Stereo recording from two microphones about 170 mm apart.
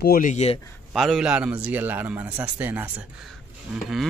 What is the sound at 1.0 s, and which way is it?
A man's voice, centre (ahead or behind).